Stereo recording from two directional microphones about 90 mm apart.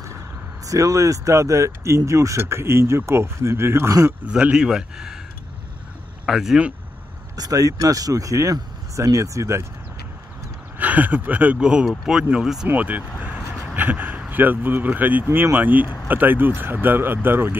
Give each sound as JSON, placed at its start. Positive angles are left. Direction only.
{"t": 0.7, "sound": "speech", "side_deg": -40}
{"t": 4.3, "sound": "speech", "side_deg": -10}
{"t": 6.2, "sound": "speech", "side_deg": -5}
{"t": 7.3, "sound": "speech", "side_deg": -45}
{"t": 10.8, "sound": "speech", "side_deg": -20}
{"t": 12.6, "sound": "speech", "side_deg": -20}